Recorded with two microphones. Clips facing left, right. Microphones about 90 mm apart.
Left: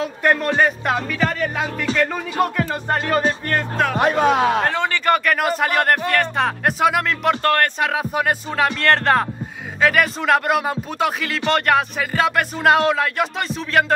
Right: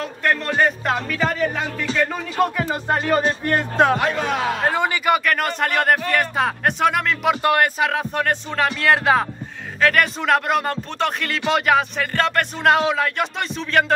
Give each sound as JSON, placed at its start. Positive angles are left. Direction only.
{"t": 0.0, "sound": "speech", "side_deg": 10}
{"t": 2.6, "sound": "music", "side_deg": -10}
{"t": 3.1, "sound": "speech", "side_deg": 0}
{"t": 3.4, "sound": "speech", "side_deg": -20}
{"t": 3.9, "sound": "speech", "side_deg": 40}
{"t": 4.6, "sound": "speech", "side_deg": -10}
{"t": 7.4, "sound": "music", "side_deg": -15}
{"t": 7.8, "sound": "speech", "side_deg": 5}